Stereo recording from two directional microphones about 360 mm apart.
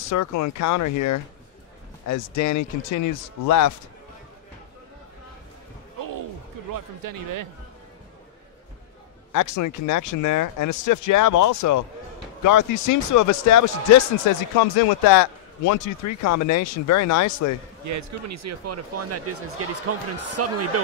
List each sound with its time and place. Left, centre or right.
0.1 s speech: left
6.7 s speech: right
9.3 s speech: left
17.8 s speech: right